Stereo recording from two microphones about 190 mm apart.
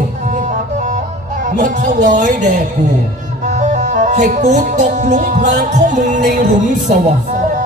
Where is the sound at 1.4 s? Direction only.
40° right (ahead or behind).